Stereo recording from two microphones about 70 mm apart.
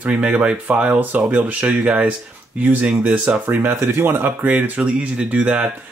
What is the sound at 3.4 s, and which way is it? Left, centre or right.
Speech, right.